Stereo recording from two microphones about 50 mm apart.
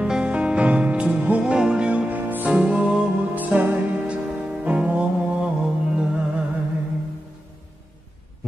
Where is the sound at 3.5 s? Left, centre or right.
Right.